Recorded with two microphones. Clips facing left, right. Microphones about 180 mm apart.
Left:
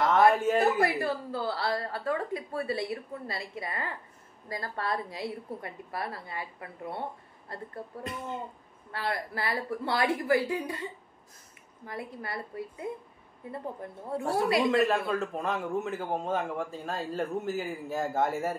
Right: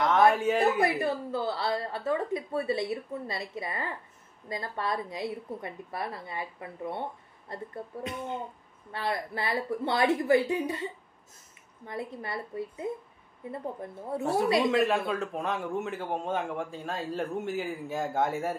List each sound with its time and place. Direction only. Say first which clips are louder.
0.0 s a sound: even; centre (ahead or behind)
0.7 s a woman's voice: right 1 dB; 20° right (ahead or behind)
8.0 s a man's voice: right 2 dB; centre (ahead or behind)
8.9 s a woman's voice: right 1 dB; 20° right (ahead or behind)
11.8 s a woman's voice: right 2 dB; 25° right (ahead or behind)
14.6 s a man's voice: even; centre (ahead or behind)